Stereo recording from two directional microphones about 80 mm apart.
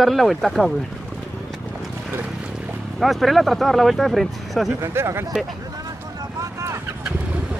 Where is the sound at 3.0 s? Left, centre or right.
Centre.